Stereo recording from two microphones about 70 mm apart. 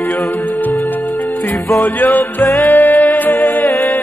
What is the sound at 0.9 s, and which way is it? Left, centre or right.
Music, left.